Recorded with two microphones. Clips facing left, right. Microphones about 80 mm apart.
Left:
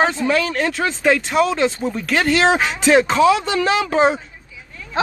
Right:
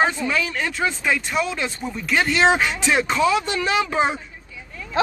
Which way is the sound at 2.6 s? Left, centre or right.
Left.